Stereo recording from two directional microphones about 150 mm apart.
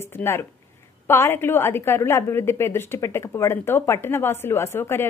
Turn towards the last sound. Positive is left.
turn(degrees=15)  # may be behind; listen again after turning